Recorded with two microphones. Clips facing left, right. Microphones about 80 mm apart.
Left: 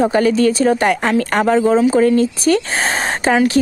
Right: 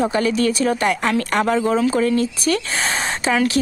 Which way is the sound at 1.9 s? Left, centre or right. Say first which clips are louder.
Left 5 dB; left.